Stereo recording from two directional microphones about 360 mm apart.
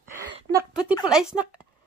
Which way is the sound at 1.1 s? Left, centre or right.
Centre.